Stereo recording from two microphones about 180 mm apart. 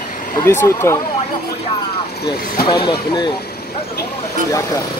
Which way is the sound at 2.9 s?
25° left (ahead or behind).